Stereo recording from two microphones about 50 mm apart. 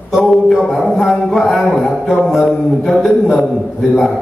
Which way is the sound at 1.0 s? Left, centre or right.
Centre.